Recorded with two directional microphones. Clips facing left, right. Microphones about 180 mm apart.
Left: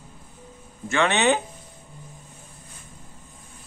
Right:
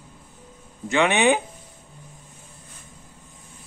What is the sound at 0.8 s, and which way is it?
Speech, 15° right (ahead or behind).